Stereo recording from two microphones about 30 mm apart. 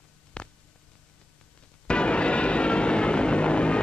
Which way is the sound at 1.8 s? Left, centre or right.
Left.